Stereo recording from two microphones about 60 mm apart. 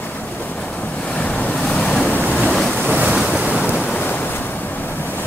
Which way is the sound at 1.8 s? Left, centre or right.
Centre.